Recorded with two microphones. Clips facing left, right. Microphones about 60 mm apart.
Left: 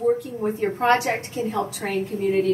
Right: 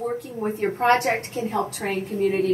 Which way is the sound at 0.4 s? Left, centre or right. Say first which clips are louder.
Even; right.